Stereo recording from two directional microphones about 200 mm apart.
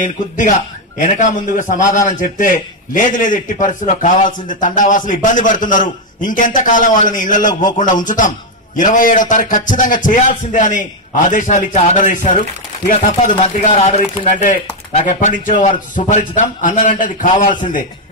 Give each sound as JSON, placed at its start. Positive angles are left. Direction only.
{"t": 0.0, "sound": "a man's voice", "side_deg": 40}